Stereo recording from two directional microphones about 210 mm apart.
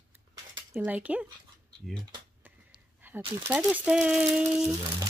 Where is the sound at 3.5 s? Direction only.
5° right (ahead or behind).